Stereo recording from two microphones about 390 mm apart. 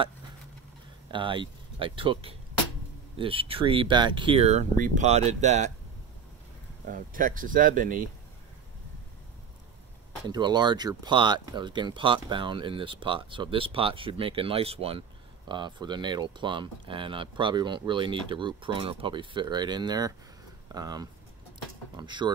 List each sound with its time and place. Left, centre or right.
1.1 s speech: centre
6.9 s speech: right
10.2 s speech: centre